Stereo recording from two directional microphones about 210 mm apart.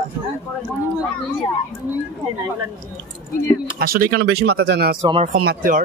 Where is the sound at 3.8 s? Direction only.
45° right (ahead or behind).